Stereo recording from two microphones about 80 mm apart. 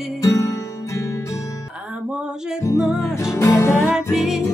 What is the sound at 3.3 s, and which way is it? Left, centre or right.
Music, left.